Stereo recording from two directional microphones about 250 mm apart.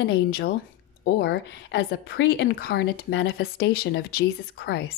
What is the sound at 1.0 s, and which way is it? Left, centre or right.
A woman's voice, left.